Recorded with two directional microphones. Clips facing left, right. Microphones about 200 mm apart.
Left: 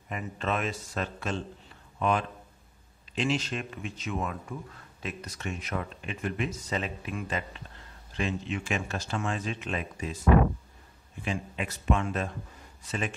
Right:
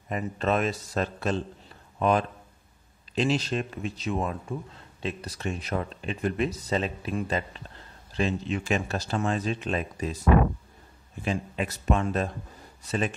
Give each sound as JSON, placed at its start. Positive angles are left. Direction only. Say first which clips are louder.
{"t": 0.1, "sound": "speech", "louder": "right 5 dB", "side_deg": -40}
{"t": 11.2, "sound": "speech", "louder": "right 4 dB", "side_deg": -40}